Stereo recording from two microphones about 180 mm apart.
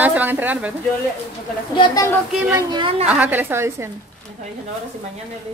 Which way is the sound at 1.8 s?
20° left (ahead or behind).